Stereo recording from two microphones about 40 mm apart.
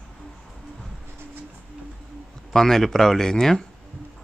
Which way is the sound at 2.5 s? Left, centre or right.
Centre.